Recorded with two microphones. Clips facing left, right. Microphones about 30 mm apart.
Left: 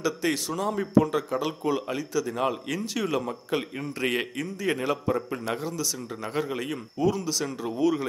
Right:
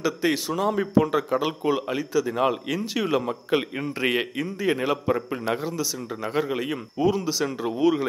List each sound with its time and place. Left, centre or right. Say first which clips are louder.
0.0 s speech: right 3 dB; centre